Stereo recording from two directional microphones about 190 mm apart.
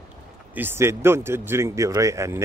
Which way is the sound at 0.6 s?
10° right (ahead or behind).